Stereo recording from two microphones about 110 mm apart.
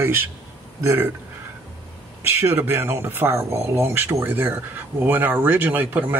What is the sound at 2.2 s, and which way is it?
Speech, 20° right (ahead or behind).